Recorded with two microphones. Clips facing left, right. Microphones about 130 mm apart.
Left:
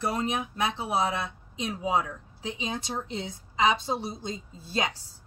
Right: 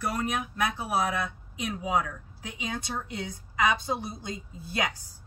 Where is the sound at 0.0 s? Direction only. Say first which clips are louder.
Left 1 dB; 25° left (ahead or behind).